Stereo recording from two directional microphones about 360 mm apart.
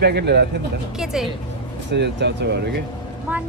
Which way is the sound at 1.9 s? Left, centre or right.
Right.